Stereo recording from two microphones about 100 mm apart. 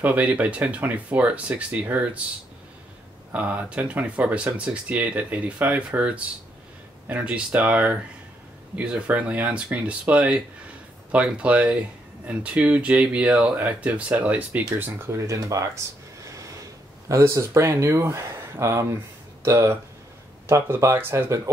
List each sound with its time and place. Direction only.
0.0 s speech: 15° right (ahead or behind)
3.3 s speech: 15° right (ahead or behind)
14.8 s speech: 30° right (ahead or behind)
17.1 s speech: 30° right (ahead or behind)